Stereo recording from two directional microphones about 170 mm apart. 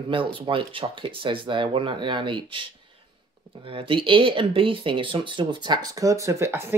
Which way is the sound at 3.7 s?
30° right (ahead or behind).